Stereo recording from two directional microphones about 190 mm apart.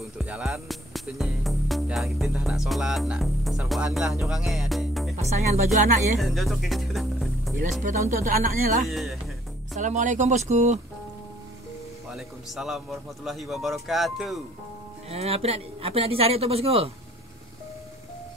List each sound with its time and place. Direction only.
0.2 s speech: 5° right (ahead or behind)
5.1 s speech: 35° right (ahead or behind)
6.1 s speech: centre (ahead or behind)
8.4 s speech: 45° right (ahead or behind)
8.8 s a man's voice: centre (ahead or behind)
9.8 s speech: 40° right (ahead or behind)
12.1 s a man's voice: centre (ahead or behind)
15.0 s speech: 30° right (ahead or behind)